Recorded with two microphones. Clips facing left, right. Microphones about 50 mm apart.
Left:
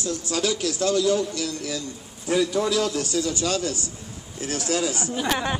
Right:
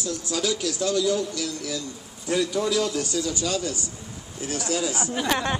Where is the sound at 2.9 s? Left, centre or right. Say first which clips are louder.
Left 1 dB; left.